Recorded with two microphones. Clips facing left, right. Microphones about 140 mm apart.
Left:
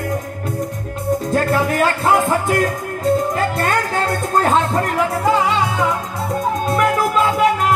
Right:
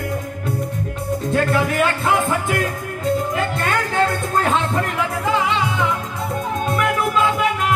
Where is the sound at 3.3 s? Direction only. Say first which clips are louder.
Left 3 dB; 40° left (ahead or behind).